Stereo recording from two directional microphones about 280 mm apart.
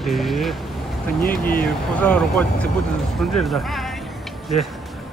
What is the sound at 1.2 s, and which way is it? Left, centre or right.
Speech, left.